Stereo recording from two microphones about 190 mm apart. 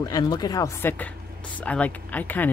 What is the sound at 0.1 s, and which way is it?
Speech, 20° left (ahead or behind).